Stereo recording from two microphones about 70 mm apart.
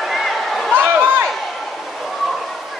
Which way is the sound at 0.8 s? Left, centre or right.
Right.